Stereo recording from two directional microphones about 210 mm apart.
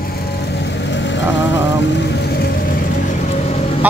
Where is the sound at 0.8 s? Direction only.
55° left (ahead or behind).